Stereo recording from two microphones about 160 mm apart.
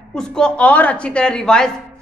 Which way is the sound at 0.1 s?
5° left (ahead or behind).